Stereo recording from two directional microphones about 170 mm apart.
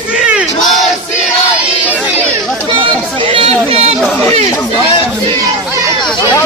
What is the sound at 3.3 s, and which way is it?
Chatter, 35° right (ahead or behind).